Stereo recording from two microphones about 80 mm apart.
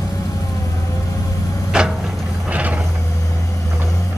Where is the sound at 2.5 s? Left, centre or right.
Centre.